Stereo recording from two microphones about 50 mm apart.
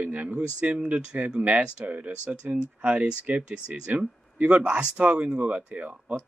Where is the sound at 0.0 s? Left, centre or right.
Right.